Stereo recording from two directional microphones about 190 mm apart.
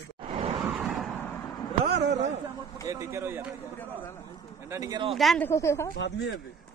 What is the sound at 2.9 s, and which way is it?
Speech, 15° right (ahead or behind).